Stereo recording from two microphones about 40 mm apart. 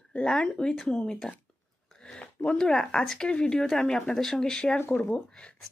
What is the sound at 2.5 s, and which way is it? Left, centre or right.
Speech, centre.